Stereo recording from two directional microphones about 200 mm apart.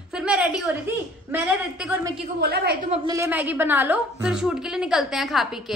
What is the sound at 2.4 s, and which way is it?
Speech, 50° right (ahead or behind).